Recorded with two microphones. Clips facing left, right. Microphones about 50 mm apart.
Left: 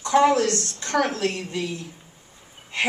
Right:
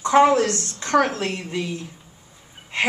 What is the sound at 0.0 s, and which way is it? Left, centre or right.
Speech, right.